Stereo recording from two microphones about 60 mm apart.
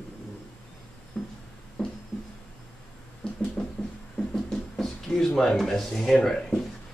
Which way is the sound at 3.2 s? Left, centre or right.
Centre.